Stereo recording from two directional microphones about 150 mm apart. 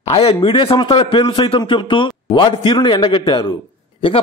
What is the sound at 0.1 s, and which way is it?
Speech, 40° left (ahead or behind).